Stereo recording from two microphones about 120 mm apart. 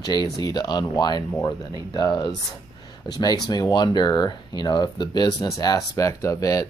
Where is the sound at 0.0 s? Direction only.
35° left (ahead or behind).